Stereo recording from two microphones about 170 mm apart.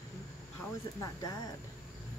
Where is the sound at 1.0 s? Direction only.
20° left (ahead or behind).